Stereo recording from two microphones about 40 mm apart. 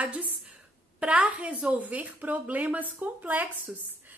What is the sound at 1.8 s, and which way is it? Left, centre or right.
A woman's voice, right.